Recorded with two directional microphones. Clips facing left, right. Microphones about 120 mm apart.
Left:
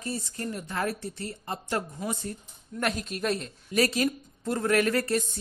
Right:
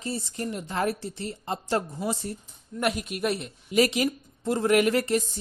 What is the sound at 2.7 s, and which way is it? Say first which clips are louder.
A woman's voice: right 2 dB; 10° right (ahead or behind).